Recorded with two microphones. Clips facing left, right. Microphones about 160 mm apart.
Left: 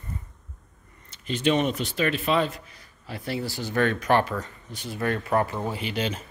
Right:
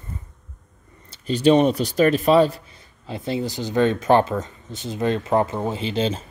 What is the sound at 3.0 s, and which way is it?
Speech, 20° right (ahead or behind).